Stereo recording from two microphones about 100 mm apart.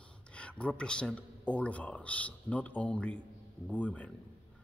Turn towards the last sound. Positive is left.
turn(degrees=15)  # may be behind; listen again after turning